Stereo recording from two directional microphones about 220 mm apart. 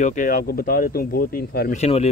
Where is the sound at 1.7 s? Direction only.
30° left (ahead or behind).